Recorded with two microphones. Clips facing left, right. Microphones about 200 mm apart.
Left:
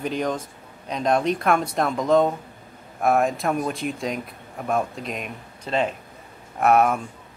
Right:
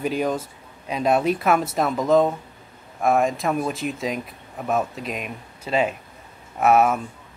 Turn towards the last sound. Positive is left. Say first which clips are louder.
# right 1 dB
turn(degrees=0)  # may be behind; listen again after turning